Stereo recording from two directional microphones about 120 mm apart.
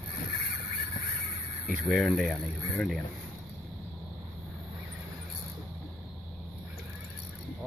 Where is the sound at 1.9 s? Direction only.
Centre (ahead or behind).